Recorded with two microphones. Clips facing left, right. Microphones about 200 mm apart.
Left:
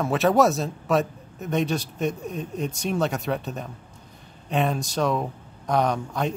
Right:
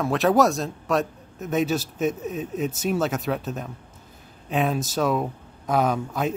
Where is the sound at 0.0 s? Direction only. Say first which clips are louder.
Even; centre (ahead or behind).